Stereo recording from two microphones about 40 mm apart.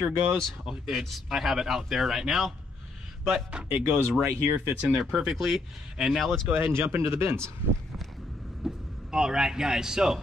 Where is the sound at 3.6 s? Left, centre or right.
Right.